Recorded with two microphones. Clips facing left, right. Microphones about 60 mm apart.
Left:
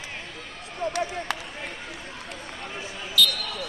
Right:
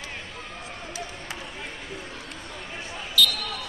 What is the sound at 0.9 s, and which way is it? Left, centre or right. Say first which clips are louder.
Basketball bounce: left 6 dB; left.